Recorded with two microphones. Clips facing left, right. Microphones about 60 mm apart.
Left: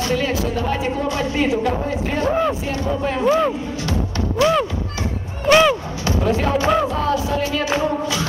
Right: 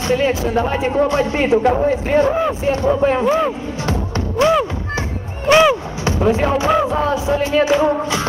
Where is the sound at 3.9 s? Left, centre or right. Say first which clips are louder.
Right 2 dB; right.